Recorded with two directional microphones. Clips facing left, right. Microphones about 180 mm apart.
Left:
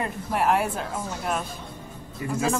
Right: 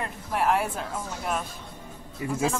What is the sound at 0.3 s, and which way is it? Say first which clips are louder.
Speech: left 1 dB; 5° left (ahead or behind).